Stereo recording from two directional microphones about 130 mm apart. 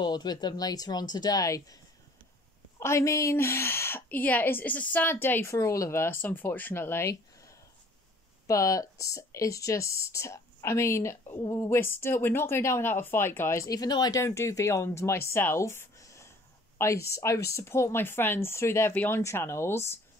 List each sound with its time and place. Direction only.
0.0 s speech: 35° left (ahead or behind)
2.8 s speech: 20° left (ahead or behind)